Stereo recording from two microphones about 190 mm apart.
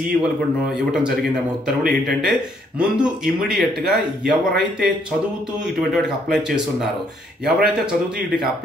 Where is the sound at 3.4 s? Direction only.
55° right (ahead or behind).